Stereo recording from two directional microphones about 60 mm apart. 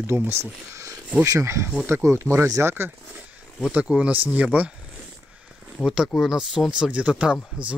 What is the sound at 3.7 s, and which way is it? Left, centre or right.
Speech, right.